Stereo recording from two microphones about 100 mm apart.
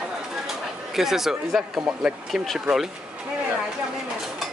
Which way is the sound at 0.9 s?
5° right (ahead or behind).